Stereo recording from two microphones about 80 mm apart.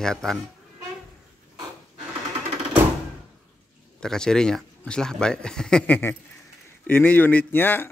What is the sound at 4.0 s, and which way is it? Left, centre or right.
A man's voice, centre.